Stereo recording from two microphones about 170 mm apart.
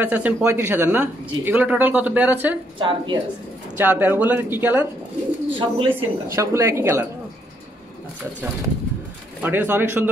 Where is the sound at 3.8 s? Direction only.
10° right (ahead or behind).